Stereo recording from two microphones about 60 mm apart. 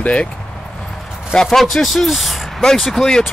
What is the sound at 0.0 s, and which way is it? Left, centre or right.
Speech, centre.